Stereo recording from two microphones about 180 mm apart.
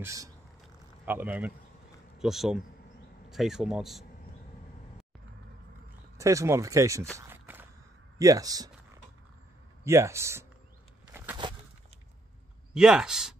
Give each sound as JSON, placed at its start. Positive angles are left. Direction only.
{"t": 0.0, "sound": "speech", "side_deg": -15}
{"t": 6.1, "sound": "speech", "side_deg": -15}
{"t": 7.2, "sound": "walk", "side_deg": -15}
{"t": 8.2, "sound": "speech", "side_deg": -20}
{"t": 9.8, "sound": "speech", "side_deg": -15}
{"t": 11.1, "sound": "a sound", "side_deg": -10}
{"t": 12.7, "sound": "speech", "side_deg": -5}